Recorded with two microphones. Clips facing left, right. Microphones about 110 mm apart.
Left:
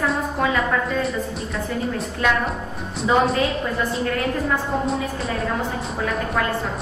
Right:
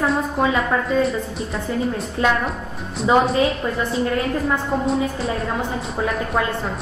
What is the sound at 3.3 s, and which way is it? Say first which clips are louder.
Speech: right 2 dB; 30° right (ahead or behind).